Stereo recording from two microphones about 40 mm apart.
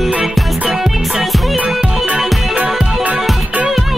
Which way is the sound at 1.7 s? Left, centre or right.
Right.